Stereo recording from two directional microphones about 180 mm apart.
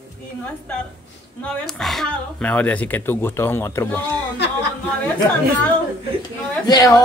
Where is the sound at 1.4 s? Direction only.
5° left (ahead or behind).